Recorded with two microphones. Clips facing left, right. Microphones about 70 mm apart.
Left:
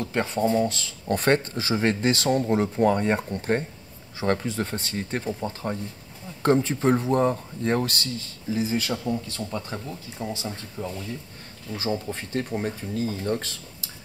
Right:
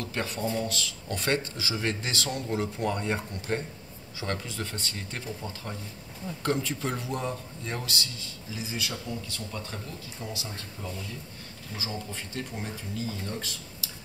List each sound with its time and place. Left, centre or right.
0.0 s speech: left
0.4 s speech: left
0.7 s speech: left
1.0 s speech: left
4.2 s speech: left
10.2 s speech: left
11.7 s speech: left